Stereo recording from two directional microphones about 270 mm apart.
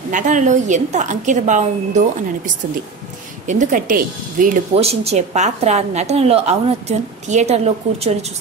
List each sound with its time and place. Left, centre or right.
0.1 s a woman's voice: right